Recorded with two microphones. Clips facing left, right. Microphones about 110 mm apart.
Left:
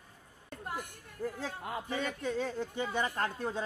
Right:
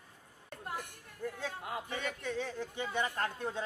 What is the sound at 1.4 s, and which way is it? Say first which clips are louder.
A man's voice: left 1 dB; 40° left (ahead or behind).